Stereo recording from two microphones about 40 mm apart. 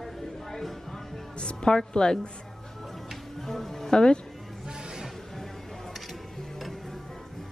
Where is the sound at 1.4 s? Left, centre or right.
Centre.